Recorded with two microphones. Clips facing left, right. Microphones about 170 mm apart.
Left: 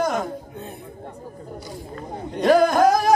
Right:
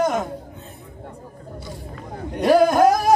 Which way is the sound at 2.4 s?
5° right (ahead or behind).